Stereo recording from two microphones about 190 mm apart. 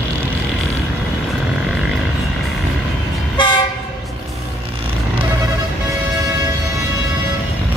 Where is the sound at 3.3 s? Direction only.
25° left (ahead or behind).